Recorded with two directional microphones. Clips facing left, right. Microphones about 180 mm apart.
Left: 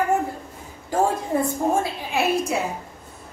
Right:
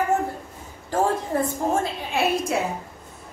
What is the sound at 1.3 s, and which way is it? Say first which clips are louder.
Speech: left 3 dB; 15° left (ahead or behind).